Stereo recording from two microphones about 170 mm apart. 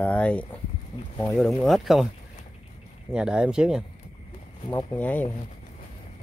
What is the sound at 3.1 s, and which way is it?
Speech, 5° right (ahead or behind).